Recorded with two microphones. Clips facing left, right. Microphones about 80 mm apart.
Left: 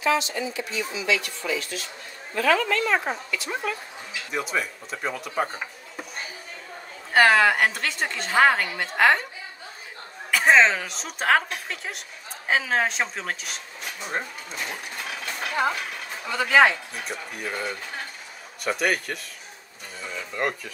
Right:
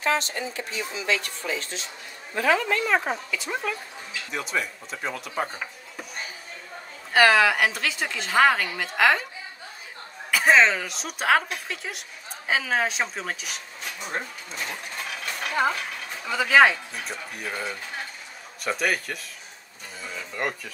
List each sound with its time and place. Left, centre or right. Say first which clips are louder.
0.0 s speech: left 2 dB; right
2.3 s speech: left 1 dB; right
2.8 s a woman's voice: even; centre
7.2 s a woman's voice: left 1 dB; centre
10.3 s a woman's voice: left 1 dB; centre
16.3 s a woman's voice: even; centre
20.0 s a sound: left 2 dB; centre